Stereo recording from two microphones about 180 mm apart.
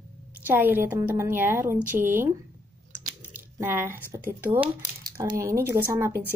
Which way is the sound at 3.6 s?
10° right (ahead or behind).